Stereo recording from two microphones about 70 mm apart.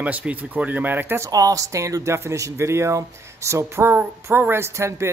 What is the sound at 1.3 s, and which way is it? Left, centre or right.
Speech, right.